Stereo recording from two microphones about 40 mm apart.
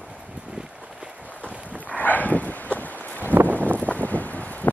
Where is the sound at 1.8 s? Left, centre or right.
Left.